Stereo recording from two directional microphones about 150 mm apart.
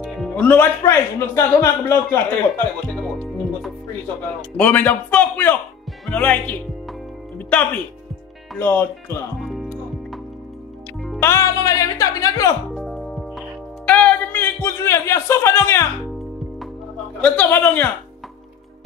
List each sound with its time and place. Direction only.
0.4 s a man's voice: 15° left (ahead or behind)
2.5 s music: 5° left (ahead or behind)
4.6 s a man's voice: 10° left (ahead or behind)
9.4 s music: centre (ahead or behind)
11.1 s speech: 20° left (ahead or behind)
12.7 s music: centre (ahead or behind)
13.8 s speech: 10° left (ahead or behind)
17.2 s a man's voice: 15° left (ahead or behind)